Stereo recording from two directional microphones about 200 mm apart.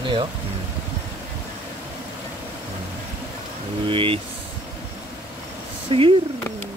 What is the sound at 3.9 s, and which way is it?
Speech, 25° right (ahead or behind).